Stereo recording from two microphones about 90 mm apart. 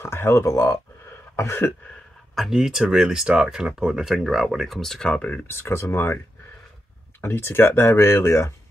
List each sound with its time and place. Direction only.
0.0 s speech: 25° left (ahead or behind)
1.3 s throat clearing: 30° left (ahead or behind)
2.3 s speech: centre (ahead or behind); by 5.4 s 15° left (ahead or behind)
5.5 s speech: 30° left (ahead or behind)
7.2 s speech: 25° left (ahead or behind)